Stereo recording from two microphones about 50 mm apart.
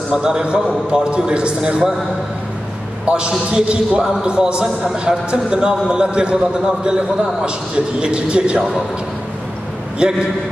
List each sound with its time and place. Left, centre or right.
0.1 s a man's voice: centre
3.1 s a man's voice: centre
10.0 s a man's voice: centre